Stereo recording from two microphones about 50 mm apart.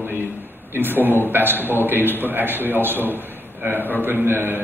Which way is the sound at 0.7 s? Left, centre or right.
Right.